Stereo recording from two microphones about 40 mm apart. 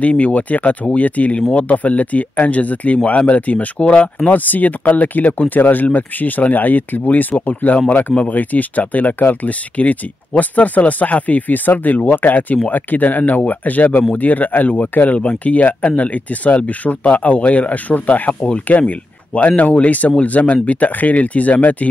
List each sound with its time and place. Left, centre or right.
0.0 s speech: left
4.3 s speech: left